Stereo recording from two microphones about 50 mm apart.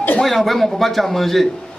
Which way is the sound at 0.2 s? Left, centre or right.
Centre.